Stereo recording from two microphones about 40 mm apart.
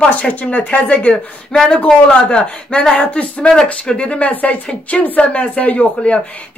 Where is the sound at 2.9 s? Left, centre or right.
Left.